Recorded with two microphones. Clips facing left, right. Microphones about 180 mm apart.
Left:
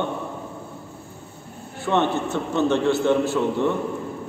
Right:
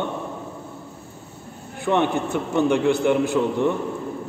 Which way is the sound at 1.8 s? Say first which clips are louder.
Right 1 dB; 15° right (ahead or behind).